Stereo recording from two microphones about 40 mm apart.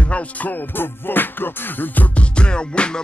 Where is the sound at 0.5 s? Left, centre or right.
Left.